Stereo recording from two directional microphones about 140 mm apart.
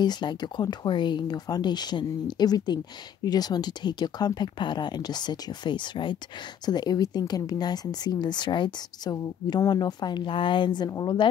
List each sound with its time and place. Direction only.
0.0 s speech: 30° left (ahead or behind)